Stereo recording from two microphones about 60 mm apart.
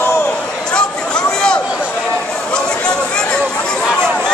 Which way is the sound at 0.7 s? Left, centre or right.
Centre.